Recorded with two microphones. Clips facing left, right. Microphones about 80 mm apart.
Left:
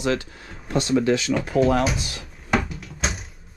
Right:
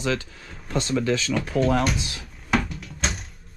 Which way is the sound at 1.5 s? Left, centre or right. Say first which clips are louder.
Left 2 dB; centre.